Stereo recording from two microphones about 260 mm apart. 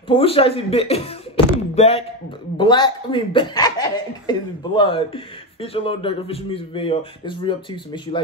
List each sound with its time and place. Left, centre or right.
0.1 s speech: left